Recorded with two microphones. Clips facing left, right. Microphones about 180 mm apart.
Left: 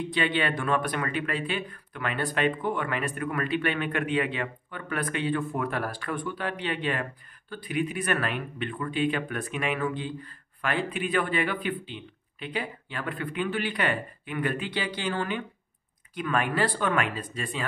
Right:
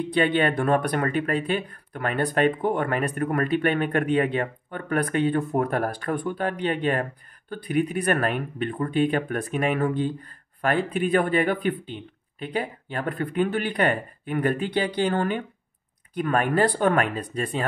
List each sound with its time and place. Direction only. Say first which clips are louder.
0.1 s speech: right 7 dB; 45° right (ahead or behind)